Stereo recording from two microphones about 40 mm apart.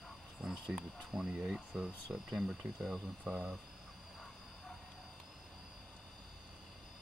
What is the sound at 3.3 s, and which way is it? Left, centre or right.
Speech, centre.